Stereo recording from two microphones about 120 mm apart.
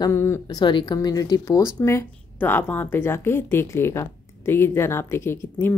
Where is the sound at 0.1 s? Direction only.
20° left (ahead or behind).